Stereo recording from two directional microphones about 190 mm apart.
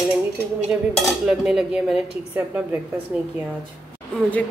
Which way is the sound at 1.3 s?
5° right (ahead or behind).